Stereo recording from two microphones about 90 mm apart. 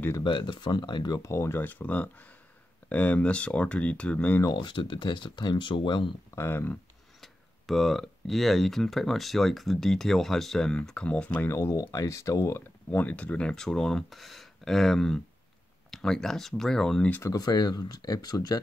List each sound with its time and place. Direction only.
0.2 s speech: 60° left (ahead or behind)
1.2 s speech: 30° left (ahead or behind)
4.6 s speech: 65° left (ahead or behind)
6.3 s speech: 25° left (ahead or behind)
7.2 s speech: centre (ahead or behind)
11.4 s speech: 30° left (ahead or behind)
12.9 s speech: 15° left (ahead or behind)
17.2 s speech: 45° left (ahead or behind)